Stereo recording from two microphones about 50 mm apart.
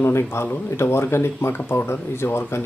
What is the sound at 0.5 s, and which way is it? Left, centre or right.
Speech, left.